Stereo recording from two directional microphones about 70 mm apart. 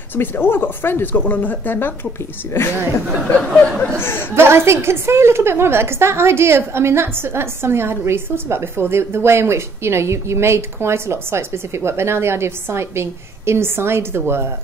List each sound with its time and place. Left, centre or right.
0.1 s speech: left
4.0 s speech: left
4.4 s a woman's voice: right